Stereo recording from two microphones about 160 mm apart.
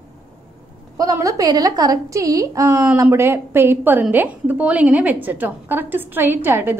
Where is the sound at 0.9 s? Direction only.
20° right (ahead or behind).